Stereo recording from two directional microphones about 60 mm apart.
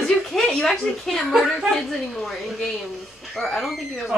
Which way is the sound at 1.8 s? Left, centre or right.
Centre.